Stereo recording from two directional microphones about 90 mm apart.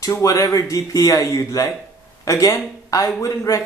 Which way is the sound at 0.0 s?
40° left (ahead or behind).